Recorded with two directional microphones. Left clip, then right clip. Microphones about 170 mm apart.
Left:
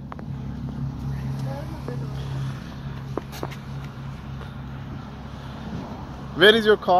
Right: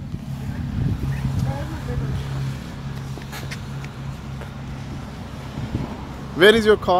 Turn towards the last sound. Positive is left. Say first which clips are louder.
# right 2 dB
turn(degrees=-10)  # may be behind; listen again after turning